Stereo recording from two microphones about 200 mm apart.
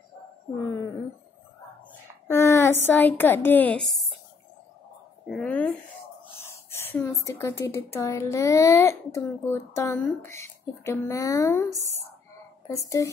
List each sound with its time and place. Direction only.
2.2 s a woman's voice: 15° left (ahead or behind)
5.2 s a woman's voice: 5° left (ahead or behind)
6.3 s a sound: 15° left (ahead or behind)
7.2 s a child's voice: 15° left (ahead or behind)